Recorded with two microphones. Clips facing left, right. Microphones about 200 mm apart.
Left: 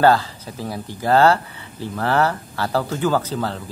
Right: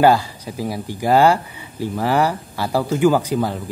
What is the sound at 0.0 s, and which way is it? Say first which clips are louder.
Speech: right 1 dB; 10° right (ahead or behind).